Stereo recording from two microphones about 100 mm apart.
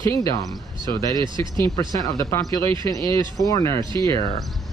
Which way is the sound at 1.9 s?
35° left (ahead or behind).